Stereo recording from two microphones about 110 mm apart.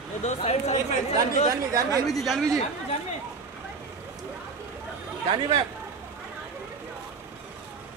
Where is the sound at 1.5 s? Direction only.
30° right (ahead or behind).